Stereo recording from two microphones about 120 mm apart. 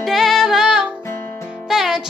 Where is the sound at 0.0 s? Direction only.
Centre (ahead or behind).